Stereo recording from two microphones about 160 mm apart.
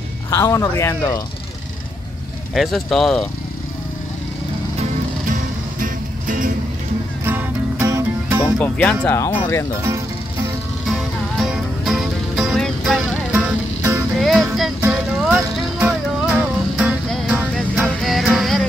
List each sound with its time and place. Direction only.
0.3 s speech: 20° left (ahead or behind)
2.5 s speech: centre (ahead or behind)
5.3 s music: 55° right (ahead or behind)
7.2 s music: 15° right (ahead or behind)
8.5 s speech: 10° left (ahead or behind)
10.9 s music: centre (ahead or behind)